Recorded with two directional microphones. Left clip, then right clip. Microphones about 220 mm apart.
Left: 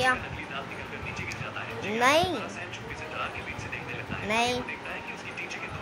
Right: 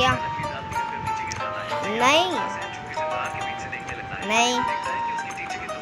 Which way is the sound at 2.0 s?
10° right (ahead or behind).